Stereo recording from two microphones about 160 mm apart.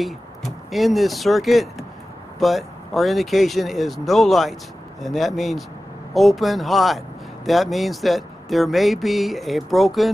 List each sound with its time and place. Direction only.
0.0 s speech: centre (ahead or behind)